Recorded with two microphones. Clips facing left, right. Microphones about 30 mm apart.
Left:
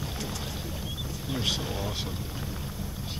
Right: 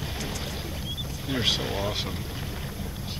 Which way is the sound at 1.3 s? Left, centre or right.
Right.